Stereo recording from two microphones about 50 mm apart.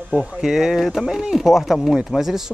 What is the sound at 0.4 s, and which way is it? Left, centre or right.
Speech, centre.